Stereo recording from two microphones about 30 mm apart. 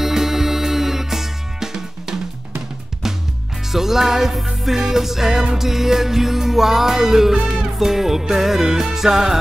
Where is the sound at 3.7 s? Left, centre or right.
Centre.